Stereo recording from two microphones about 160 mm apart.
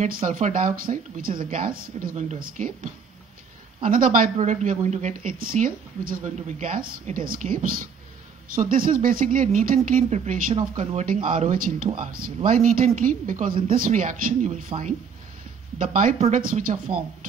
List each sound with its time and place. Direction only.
0.0 s speech: 55° right (ahead or behind)
3.9 s speech: 60° right (ahead or behind)
11.3 s speech: 60° right (ahead or behind)
15.8 s speech: 55° right (ahead or behind)